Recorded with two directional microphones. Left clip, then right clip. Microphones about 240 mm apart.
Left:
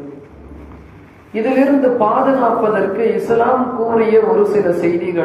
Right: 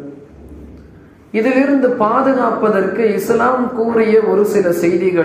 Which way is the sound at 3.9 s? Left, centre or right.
Right.